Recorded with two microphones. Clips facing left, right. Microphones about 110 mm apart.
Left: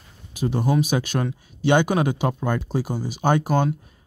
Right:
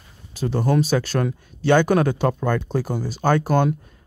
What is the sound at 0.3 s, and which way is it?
Speech, 10° left (ahead or behind).